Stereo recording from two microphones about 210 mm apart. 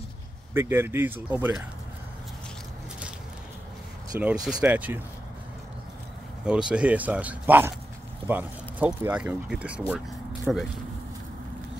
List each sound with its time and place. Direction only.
0.6 s speech: 10° right (ahead or behind)
4.2 s speech: 5° right (ahead or behind)
6.4 s speech: 5° right (ahead or behind)